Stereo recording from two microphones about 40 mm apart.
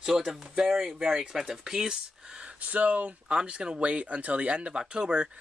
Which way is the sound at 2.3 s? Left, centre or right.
Right.